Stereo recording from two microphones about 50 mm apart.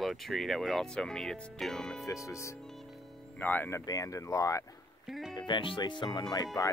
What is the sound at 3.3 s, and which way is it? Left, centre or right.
Speech, left.